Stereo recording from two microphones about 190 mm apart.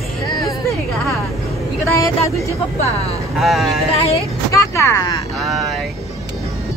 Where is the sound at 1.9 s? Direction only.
15° left (ahead or behind).